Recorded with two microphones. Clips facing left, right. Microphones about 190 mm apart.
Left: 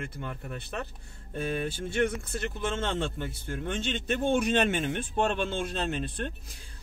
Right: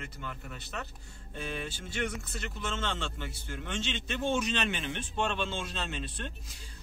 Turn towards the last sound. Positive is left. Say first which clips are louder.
# left 7 dB
turn(degrees=50)  # may be behind; listen again after turning